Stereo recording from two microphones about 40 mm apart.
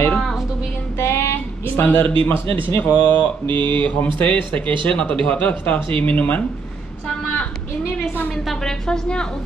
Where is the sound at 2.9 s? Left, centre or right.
Left.